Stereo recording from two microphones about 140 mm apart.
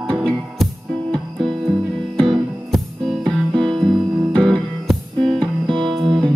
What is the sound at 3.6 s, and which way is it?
Music, 35° right (ahead or behind).